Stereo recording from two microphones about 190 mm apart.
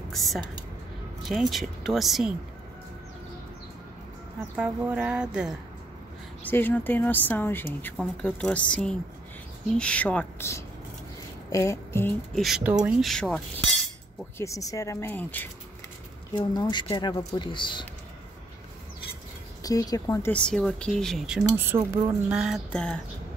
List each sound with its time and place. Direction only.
0.1 s speech: centre (ahead or behind)
4.6 s speech: 5° right (ahead or behind)
6.4 s speech: 10° left (ahead or behind)
11.5 s a sound: 15° left (ahead or behind)
12.4 s speech: centre (ahead or behind)
14.4 s speech: 15° left (ahead or behind)
16.3 s speech: 25° left (ahead or behind)
19.6 s speech: 20° left (ahead or behind)